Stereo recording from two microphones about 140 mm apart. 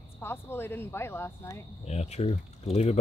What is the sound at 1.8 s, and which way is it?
Speech, 50° left (ahead or behind).